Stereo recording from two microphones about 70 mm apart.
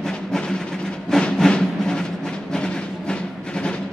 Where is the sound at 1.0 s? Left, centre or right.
Centre.